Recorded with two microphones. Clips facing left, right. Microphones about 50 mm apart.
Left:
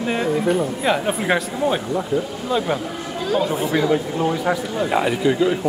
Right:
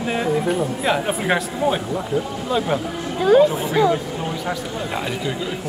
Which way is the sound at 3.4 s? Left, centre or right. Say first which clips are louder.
Right 1 dB; centre.